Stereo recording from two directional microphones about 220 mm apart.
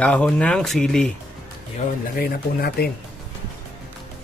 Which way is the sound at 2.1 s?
45° left (ahead or behind).